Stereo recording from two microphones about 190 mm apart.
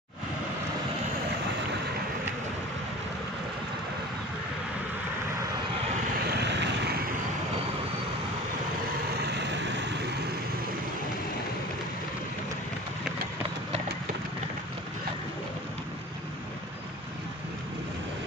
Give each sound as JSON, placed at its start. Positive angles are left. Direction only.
{"t": 6.2, "sound": "vehicle", "side_deg": -60}
{"t": 9.2, "sound": "vehicle", "side_deg": -65}